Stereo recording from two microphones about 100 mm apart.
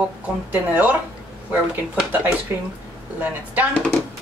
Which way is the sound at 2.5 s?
20° right (ahead or behind).